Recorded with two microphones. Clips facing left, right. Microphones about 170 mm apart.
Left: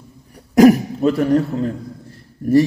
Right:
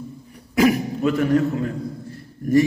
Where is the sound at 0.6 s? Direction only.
40° left (ahead or behind).